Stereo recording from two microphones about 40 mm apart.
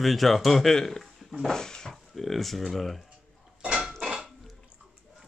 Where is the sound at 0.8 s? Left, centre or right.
Centre.